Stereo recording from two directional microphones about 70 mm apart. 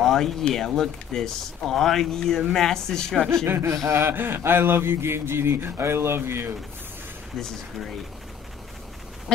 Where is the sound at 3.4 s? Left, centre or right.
Right.